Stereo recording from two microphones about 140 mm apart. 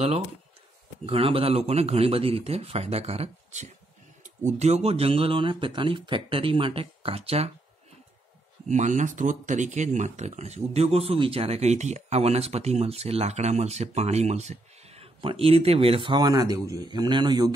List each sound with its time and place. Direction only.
1.0 s speech: 40° right (ahead or behind)
8.6 s speech: 60° right (ahead or behind); by 17.5 s 30° right (ahead or behind)